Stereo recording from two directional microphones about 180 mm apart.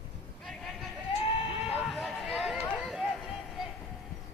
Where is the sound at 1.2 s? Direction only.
30° left (ahead or behind).